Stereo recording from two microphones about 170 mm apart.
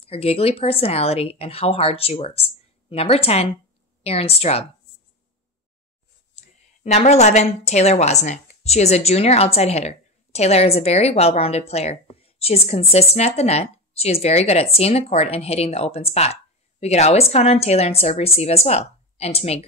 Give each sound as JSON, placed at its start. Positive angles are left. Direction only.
{"t": 0.0, "sound": "a woman's voice", "side_deg": 35}
{"t": 6.3, "sound": "a woman's voice", "side_deg": 40}